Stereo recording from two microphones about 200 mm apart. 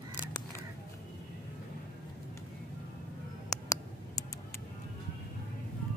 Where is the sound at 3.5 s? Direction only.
15° left (ahead or behind).